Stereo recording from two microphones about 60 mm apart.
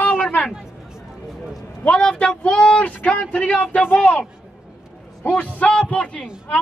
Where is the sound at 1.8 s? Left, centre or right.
Centre.